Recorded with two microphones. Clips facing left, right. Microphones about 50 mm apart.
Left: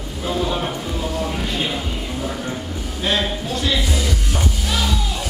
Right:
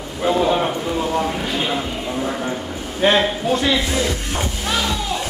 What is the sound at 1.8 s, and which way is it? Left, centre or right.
Music, right.